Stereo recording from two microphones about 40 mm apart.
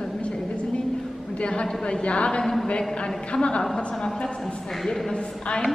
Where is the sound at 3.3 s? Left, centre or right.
Left.